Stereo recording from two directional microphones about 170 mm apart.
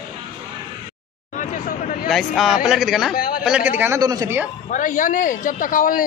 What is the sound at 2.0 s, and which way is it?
Speech, centre (ahead or behind).